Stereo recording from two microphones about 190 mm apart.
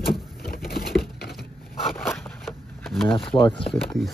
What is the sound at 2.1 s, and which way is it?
Shuffling cards, centre (ahead or behind).